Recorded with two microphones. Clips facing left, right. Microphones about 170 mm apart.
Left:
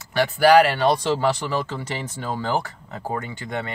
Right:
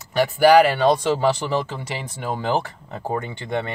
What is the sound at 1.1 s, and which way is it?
Speech, 15° right (ahead or behind).